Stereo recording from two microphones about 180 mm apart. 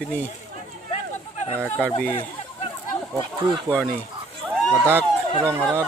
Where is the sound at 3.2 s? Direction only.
25° right (ahead or behind).